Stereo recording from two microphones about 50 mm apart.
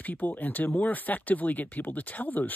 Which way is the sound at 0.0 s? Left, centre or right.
Left.